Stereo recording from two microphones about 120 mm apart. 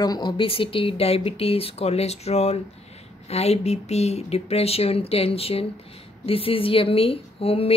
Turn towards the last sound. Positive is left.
turn(degrees=55)  # may be behind; listen again after turning